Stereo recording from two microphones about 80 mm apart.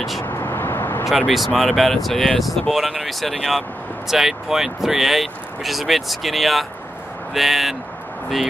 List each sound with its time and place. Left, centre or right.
0.2 s vehicle: left
1.0 s speech: centre